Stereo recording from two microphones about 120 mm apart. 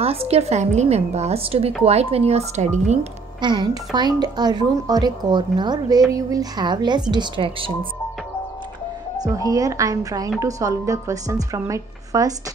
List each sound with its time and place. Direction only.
0.0 s a woman's voice: 55° right (ahead or behind); by 3.1 s 80° right
3.3 s speech: 40° right (ahead or behind)
9.2 s a woman's voice: 30° right (ahead or behind)